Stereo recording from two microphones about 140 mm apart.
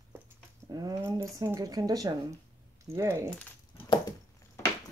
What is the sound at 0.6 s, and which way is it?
Speech, 25° right (ahead or behind).